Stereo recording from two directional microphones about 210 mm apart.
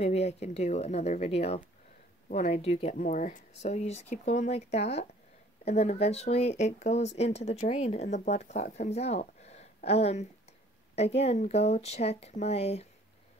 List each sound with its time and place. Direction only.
0.0 s speech: 30° left (ahead or behind)